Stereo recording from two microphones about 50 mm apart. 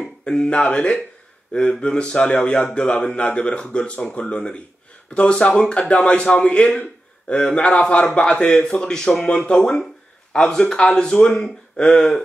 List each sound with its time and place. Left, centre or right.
0.2 s speech: left
6.8 s a sound: left
7.5 s speech: left